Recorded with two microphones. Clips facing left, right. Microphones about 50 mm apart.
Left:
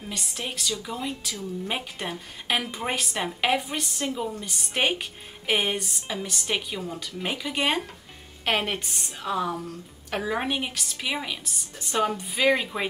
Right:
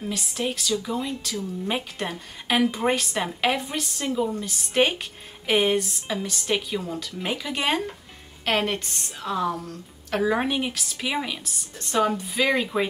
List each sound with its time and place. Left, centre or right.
0.0 s a woman's voice: centre